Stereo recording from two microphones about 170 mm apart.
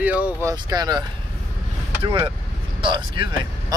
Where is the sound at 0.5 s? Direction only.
25° right (ahead or behind).